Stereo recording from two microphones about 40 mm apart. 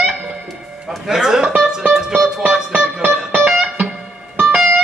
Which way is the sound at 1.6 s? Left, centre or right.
Centre.